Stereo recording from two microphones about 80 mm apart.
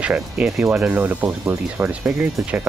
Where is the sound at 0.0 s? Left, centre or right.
Centre.